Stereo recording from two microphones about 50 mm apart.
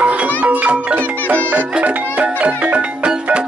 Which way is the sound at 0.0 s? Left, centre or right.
Right.